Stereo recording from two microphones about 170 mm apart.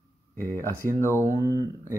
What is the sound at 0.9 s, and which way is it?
Speech, 15° left (ahead or behind).